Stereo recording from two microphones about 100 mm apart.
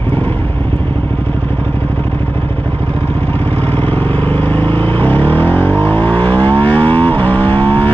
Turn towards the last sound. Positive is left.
turn(degrees=15)  # may be behind; listen again after turning